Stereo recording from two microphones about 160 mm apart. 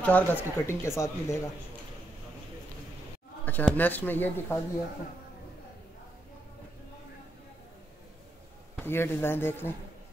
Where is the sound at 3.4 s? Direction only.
10° left (ahead or behind).